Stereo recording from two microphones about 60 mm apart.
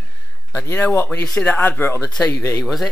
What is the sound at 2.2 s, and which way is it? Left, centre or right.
Speech, left.